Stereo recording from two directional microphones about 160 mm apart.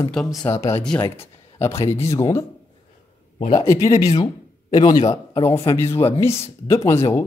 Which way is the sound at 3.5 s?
20° left (ahead or behind).